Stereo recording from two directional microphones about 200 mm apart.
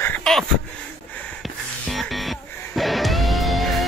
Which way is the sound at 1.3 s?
Centre (ahead or behind).